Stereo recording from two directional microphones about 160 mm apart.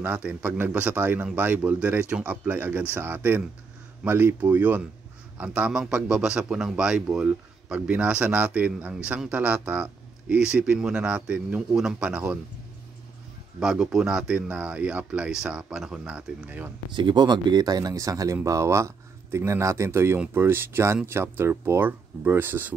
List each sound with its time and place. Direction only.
0.0 s a man's voice: 10° right (ahead or behind)
13.6 s a man's voice: 5° right (ahead or behind)
16.9 s a man's voice: 30° right (ahead or behind); by 22.8 s 10° right (ahead or behind)